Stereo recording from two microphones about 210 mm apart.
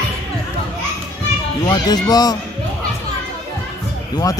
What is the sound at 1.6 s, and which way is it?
Speech, 20° left (ahead or behind).